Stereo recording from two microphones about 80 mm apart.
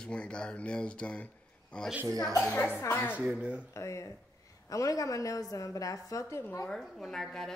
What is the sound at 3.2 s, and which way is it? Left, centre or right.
Speech, centre.